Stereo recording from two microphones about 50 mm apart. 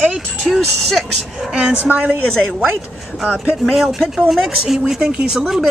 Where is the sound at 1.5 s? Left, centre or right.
Right.